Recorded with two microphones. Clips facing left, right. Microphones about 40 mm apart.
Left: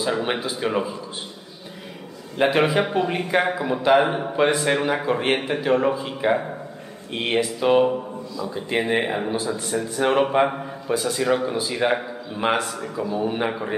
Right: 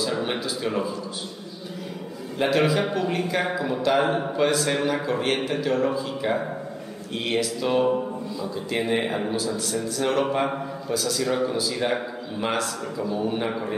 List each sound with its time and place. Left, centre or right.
0.4 s a man's voice: left
2.3 s a man's voice: left